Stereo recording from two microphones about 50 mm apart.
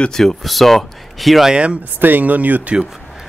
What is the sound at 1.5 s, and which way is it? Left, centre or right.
Speech, right.